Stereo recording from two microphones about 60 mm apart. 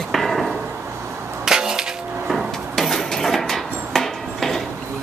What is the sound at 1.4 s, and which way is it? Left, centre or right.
Wood, centre.